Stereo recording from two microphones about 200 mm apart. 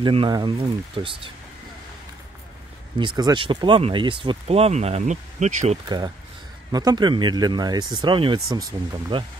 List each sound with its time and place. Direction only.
0.0 s speech: 25° right (ahead or behind)
3.2 s speech: 20° right (ahead or behind)
5.9 s speech: 20° right (ahead or behind)